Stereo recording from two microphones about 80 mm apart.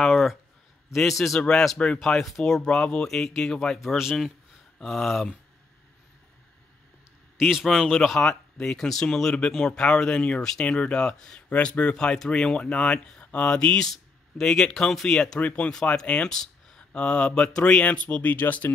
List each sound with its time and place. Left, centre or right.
0.0 s speech: centre
7.3 s speech: centre; by 18.7 s left